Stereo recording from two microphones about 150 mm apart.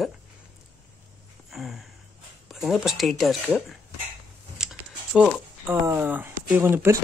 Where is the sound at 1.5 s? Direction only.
Centre (ahead or behind).